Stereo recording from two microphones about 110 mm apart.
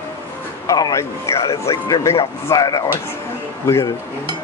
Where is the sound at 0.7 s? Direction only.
35° left (ahead or behind).